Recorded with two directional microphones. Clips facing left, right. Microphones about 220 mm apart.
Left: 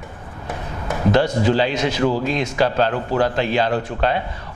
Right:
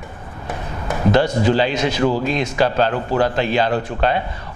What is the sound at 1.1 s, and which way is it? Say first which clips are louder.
A man's voice: right 1 dB; 10° right (ahead or behind).